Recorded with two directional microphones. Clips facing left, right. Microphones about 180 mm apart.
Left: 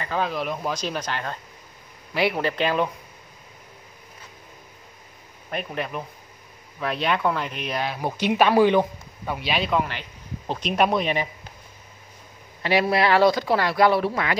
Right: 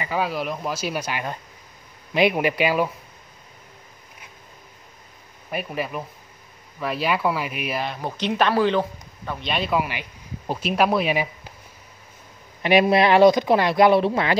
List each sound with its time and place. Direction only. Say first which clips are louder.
0.0 s speech: right 1 dB; 10° right (ahead or behind)
5.5 s speech: right 1 dB; 5° right (ahead or behind)
8.0 s speech: left 3 dB; 10° left (ahead or behind); by 11.2 s 5° right (ahead or behind)
12.6 s speech: right 4 dB; 20° right (ahead or behind)